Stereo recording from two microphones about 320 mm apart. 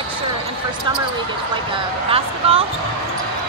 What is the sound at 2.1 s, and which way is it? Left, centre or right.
Speech, centre.